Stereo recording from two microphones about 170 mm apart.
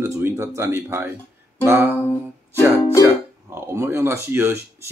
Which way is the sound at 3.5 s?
15° right (ahead or behind).